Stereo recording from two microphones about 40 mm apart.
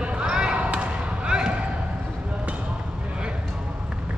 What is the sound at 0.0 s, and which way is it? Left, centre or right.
Basketball bounce, right.